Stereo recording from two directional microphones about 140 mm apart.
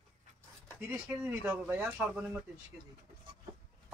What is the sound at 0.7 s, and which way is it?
Speech, 10° right (ahead or behind).